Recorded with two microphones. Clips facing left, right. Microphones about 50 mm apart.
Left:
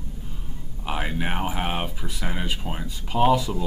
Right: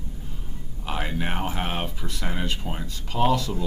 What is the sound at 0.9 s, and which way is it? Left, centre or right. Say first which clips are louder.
Speech: left 1 dB; centre.